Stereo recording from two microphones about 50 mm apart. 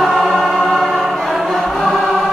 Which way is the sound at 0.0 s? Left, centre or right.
Centre.